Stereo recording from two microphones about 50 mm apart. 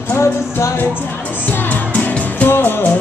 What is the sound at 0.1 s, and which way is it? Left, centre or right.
Music, left.